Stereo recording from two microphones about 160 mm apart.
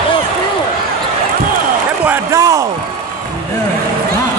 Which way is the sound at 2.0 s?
15° right (ahead or behind).